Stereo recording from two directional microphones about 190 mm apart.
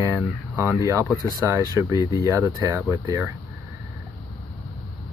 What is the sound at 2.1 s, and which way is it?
Speech, 15° right (ahead or behind).